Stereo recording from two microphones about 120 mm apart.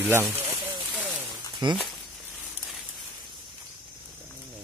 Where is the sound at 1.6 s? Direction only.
40° right (ahead or behind).